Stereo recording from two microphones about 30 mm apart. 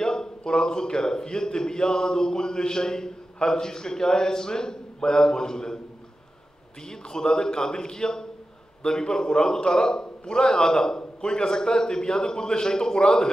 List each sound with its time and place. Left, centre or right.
0.0 s a man's voice: left
6.9 s a man's voice: left